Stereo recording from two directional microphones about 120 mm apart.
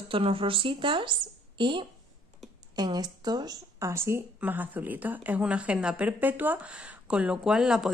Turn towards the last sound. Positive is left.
turn(degrees=-5)  # may be behind; listen again after turning